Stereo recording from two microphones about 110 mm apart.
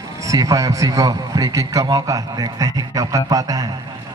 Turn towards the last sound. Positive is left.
turn(degrees=-30)  # may be behind; listen again after turning